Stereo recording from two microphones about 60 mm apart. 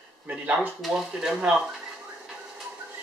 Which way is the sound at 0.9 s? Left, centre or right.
Centre.